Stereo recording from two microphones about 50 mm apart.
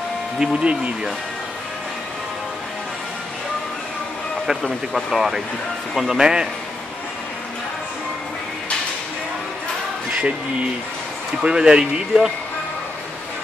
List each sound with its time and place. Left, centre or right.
0.4 s speech: centre
4.5 s speech: centre
11.4 s speech: centre